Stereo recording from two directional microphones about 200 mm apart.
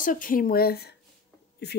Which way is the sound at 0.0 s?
40° left (ahead or behind).